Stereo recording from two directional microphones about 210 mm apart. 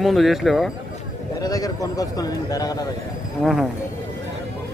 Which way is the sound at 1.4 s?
15° left (ahead or behind).